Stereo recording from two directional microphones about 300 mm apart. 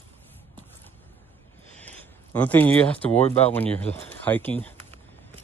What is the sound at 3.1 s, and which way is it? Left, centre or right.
Speech, left.